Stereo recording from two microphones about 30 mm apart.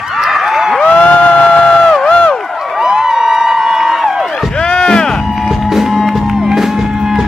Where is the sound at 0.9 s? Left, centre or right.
Left.